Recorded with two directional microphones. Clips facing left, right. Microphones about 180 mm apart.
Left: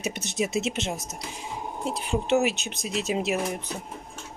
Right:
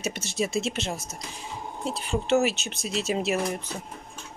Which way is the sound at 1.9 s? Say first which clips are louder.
Even; 15° left (ahead or behind).